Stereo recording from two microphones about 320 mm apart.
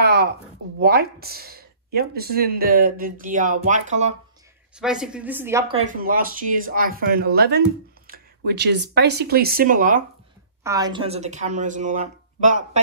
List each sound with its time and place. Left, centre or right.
0.0 s a sound: right
0.7 s speech: right
4.7 s speech: centre; by 10.0 s right
10.6 s speech: centre